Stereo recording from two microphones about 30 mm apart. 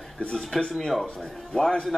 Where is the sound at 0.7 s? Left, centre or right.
Centre.